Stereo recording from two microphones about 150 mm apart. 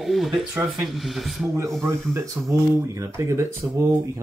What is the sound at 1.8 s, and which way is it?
Speech, 20° right (ahead or behind).